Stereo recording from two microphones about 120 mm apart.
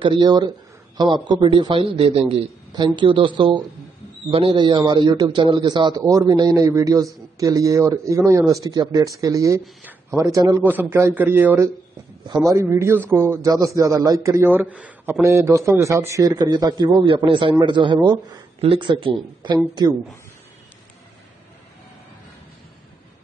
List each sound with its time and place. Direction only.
0.0 s a man's voice: 40° right (ahead or behind)
2.7 s a man's voice: 40° right (ahead or behind)
10.6 s a man's voice: 15° right (ahead or behind); by 20.0 s 35° right (ahead or behind)